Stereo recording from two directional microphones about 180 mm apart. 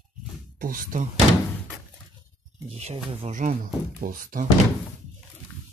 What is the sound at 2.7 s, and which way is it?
Speech, 35° right (ahead or behind).